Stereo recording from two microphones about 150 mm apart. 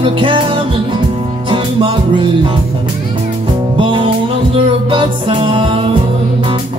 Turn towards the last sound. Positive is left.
turn(degrees=-35)  # may be behind; listen again after turning